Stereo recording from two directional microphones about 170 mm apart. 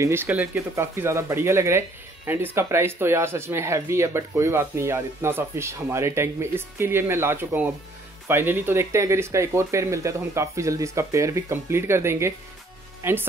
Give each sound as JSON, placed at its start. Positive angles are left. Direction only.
{"t": 0.0, "sound": "speech", "side_deg": -15}